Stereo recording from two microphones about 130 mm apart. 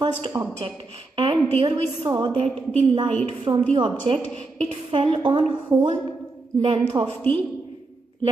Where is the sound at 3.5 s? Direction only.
35° right (ahead or behind).